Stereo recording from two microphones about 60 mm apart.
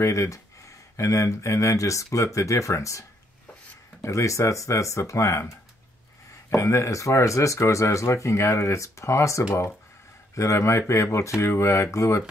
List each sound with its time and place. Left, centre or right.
0.0 s speech: left
6.5 s speech: left